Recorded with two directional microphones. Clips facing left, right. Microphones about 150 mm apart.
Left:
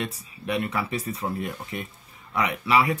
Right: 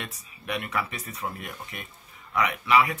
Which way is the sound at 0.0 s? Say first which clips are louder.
Left 7 dB; 30° left (ahead or behind).